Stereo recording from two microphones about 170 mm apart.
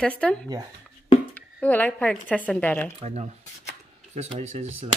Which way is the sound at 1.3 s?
10° left (ahead or behind).